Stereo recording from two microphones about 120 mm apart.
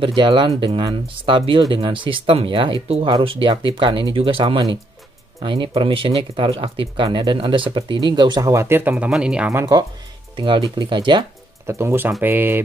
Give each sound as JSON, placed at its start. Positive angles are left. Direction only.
{"t": 0.0, "sound": "speech", "side_deg": -45}
{"t": 9.5, "sound": "speech", "side_deg": -25}
{"t": 10.3, "sound": "speech", "side_deg": -45}
{"t": 11.6, "sound": "speech", "side_deg": -20}